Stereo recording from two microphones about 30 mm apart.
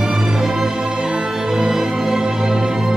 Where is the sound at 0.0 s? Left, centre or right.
Right.